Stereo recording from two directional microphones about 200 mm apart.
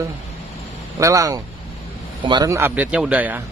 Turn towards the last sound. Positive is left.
turn(degrees=-10)  # may be behind; listen again after turning